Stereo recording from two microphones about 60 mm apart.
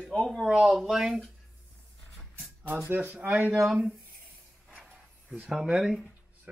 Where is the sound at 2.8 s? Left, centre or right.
Right.